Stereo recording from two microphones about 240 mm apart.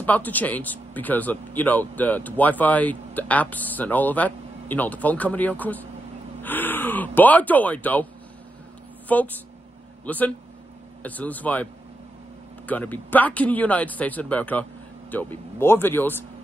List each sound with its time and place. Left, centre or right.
0.0 s speech: centre
9.1 s speech: centre